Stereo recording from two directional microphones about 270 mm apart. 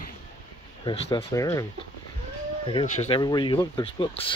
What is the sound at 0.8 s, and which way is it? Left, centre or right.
Speech, centre.